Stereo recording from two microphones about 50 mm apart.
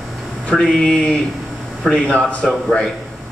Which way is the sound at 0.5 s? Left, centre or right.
Centre.